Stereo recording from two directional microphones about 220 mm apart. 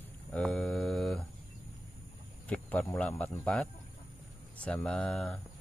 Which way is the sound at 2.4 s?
5° left (ahead or behind).